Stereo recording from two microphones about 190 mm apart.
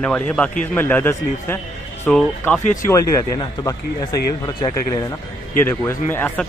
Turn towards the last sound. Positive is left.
turn(degrees=10)  # may be behind; listen again after turning